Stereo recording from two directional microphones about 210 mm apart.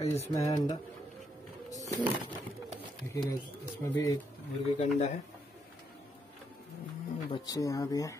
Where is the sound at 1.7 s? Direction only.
15° left (ahead or behind).